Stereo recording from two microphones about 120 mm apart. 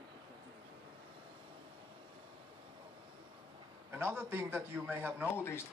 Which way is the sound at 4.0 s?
20° right (ahead or behind).